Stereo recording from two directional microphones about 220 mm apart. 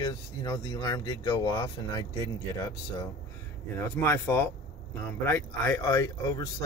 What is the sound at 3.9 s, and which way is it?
Speech, 10° left (ahead or behind).